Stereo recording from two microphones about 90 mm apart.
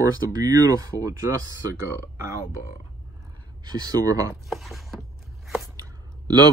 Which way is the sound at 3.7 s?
45° right (ahead or behind).